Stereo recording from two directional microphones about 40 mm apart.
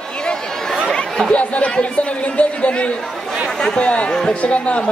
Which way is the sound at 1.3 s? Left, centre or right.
Left.